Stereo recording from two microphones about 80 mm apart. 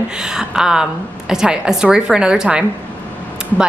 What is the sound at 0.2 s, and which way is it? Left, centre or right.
A woman's voice, centre.